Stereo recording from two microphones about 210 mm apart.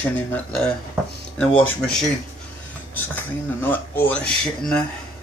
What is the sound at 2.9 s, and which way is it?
Speech, 10° left (ahead or behind).